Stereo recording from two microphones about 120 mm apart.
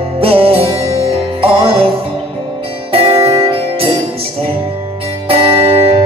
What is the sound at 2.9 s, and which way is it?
Music, 50° right (ahead or behind).